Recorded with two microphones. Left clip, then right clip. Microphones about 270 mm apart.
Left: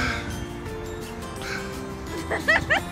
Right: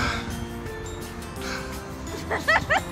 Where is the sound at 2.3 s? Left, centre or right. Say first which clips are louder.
Even; right.